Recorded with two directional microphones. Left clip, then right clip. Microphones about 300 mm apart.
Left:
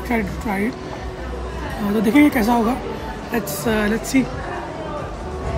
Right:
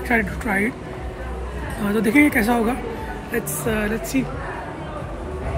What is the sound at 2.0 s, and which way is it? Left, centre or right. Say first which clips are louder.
Speech: left 1 dB; centre.